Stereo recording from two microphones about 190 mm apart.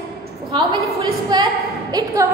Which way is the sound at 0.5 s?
25° right (ahead or behind).